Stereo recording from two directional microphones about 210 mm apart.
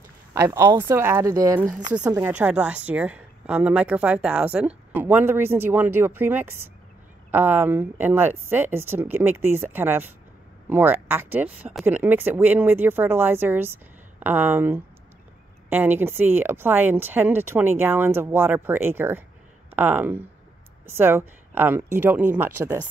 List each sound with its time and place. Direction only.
0.3 s speech: 15° right (ahead or behind)
1.7 s speech: 35° right (ahead or behind)
2.0 s speech: 5° right (ahead or behind)